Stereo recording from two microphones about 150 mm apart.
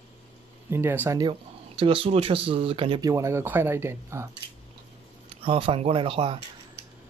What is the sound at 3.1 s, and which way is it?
Speech, 20° right (ahead or behind).